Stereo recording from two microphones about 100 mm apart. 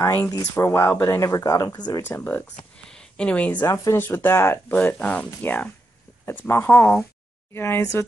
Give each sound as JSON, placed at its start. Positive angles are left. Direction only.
{"t": 0.0, "sound": "speech", "side_deg": 30}
{"t": 2.0, "sound": "speech", "side_deg": 20}
{"t": 2.9, "sound": "speech", "side_deg": 10}
{"t": 3.6, "sound": "speech", "side_deg": 30}